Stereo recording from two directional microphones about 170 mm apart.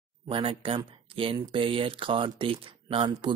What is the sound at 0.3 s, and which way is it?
Speech, 30° right (ahead or behind).